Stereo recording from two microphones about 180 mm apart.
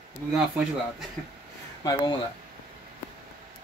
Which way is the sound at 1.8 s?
25° left (ahead or behind).